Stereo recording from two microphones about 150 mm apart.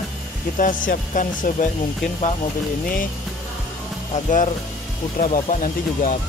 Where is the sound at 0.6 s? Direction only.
60° left (ahead or behind).